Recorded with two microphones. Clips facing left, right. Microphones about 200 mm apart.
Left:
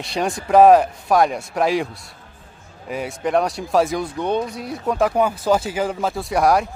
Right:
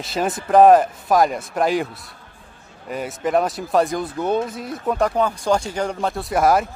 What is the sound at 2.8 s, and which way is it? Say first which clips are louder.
Speech: even; centre (ahead or behind).